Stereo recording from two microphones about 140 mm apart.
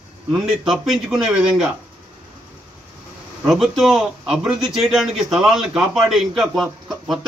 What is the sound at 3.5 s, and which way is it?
A man's voice, centre (ahead or behind).